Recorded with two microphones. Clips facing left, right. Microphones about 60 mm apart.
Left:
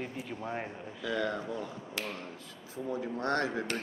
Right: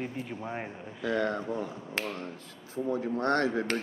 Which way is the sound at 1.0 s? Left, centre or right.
Right.